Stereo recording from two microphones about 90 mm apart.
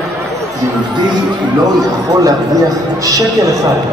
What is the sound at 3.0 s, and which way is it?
Speech, 40° right (ahead or behind).